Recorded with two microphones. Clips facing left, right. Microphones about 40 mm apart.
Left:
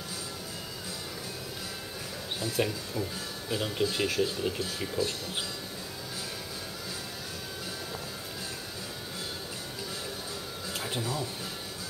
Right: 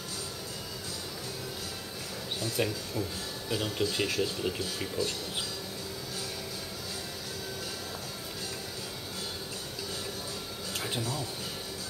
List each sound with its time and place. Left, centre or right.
2.5 s speech: centre
4.9 s speech: centre
11.0 s speech: centre